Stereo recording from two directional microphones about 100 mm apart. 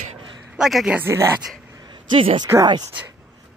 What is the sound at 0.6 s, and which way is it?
Speech, 5° right (ahead or behind).